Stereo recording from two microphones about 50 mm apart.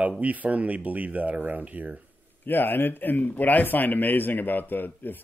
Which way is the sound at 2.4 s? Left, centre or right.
Left.